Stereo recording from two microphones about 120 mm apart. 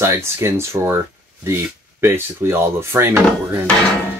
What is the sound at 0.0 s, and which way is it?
Speech, 20° right (ahead or behind).